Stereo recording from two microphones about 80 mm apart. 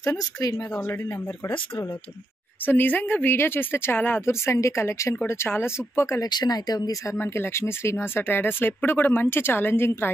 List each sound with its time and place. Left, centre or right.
0.0 s speech: left
2.6 s speech: left
4.3 s speech: left
6.2 s speech: left
7.2 s speech: left